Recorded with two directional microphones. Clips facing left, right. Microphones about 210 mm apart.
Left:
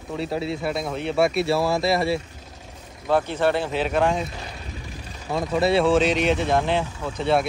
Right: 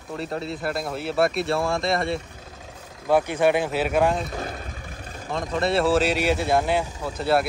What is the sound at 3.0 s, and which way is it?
Speech, 10° right (ahead or behind).